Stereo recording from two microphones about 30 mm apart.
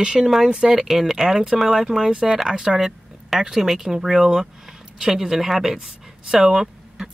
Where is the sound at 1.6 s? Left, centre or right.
Centre.